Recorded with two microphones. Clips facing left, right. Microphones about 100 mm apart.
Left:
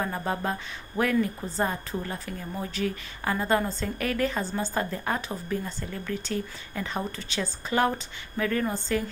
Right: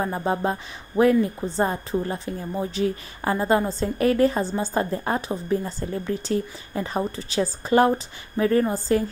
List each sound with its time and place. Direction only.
0.0 s a woman's voice: 25° right (ahead or behind)